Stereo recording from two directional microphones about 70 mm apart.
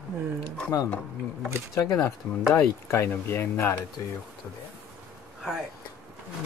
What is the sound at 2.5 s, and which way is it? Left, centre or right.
Speech, left.